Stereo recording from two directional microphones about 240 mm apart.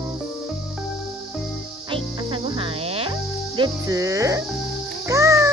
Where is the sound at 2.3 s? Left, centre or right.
Right.